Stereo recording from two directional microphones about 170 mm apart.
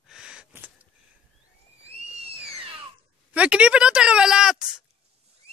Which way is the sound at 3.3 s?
5° right (ahead or behind).